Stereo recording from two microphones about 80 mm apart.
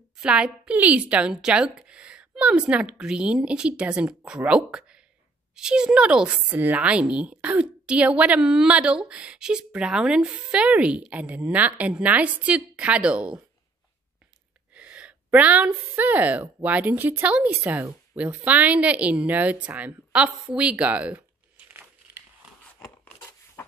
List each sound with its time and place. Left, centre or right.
0.2 s speech: centre
14.7 s a woman's voice: centre
23.0 s a sound: left